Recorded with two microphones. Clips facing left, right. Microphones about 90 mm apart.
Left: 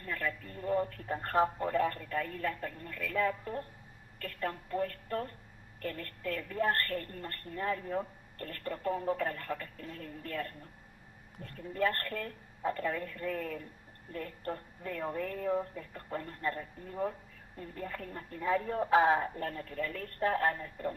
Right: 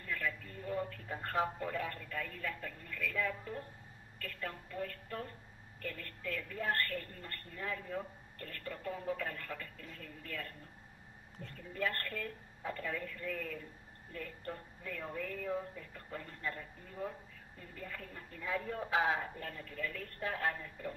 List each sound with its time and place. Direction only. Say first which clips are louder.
0.0 s a woman's voice: left 3 dB; 45° left (ahead or behind)